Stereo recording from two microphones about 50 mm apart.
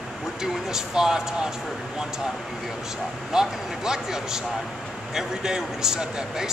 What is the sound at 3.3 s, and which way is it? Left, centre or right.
Speech, centre.